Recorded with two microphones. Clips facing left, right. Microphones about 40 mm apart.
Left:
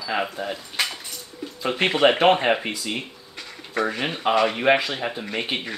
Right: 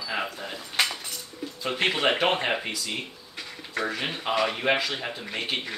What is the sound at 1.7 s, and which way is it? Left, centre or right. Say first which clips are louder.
Speech: left 5 dB; centre.